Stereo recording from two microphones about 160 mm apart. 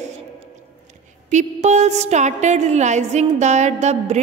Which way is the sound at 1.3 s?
45° right (ahead or behind).